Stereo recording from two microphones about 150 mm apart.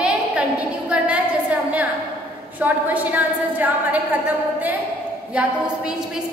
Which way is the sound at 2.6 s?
10° right (ahead or behind).